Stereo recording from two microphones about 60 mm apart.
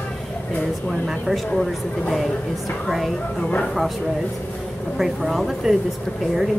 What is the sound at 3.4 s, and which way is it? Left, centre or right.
Speech, centre.